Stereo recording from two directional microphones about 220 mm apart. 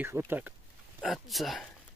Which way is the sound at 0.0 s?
10° right (ahead or behind).